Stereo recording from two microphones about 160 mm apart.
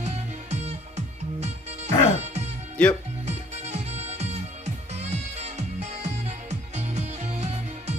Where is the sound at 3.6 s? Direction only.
45° right (ahead or behind).